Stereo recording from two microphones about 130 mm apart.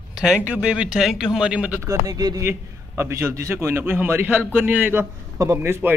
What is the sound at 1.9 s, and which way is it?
A man's voice, 30° right (ahead or behind).